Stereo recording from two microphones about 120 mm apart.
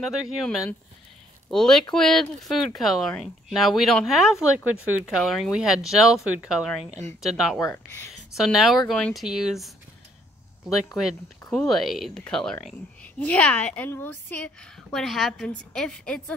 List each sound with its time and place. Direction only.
0.0 s speech: centre (ahead or behind)
7.7 s speech: 25° left (ahead or behind)
8.4 s speech: 5° right (ahead or behind)
11.5 s a woman's voice: centre (ahead or behind)
14.9 s speech: centre (ahead or behind)